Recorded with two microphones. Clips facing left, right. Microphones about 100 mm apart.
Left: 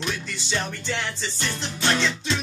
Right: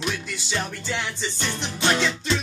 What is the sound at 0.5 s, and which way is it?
Music, 10° right (ahead or behind).